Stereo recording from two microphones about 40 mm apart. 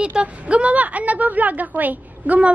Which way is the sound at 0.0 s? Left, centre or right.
Right.